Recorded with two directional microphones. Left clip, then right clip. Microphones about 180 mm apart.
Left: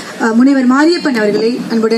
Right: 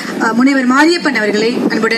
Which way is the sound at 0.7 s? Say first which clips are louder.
Even; 30° left (ahead or behind).